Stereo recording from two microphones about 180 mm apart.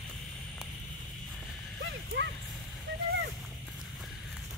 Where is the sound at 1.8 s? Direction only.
90° right.